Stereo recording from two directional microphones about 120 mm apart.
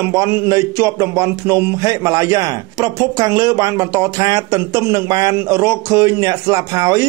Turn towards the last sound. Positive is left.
turn(degrees=-25)  # may be behind; listen again after turning